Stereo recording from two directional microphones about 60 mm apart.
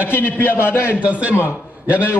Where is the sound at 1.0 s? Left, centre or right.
Right.